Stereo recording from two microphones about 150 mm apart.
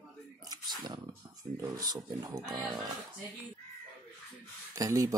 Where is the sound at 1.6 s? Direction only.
25° right (ahead or behind).